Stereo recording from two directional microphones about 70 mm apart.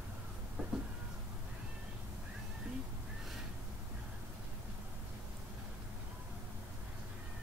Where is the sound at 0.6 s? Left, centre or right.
Centre.